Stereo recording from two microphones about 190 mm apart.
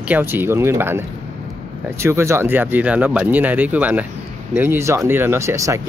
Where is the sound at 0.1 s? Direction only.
10° right (ahead or behind).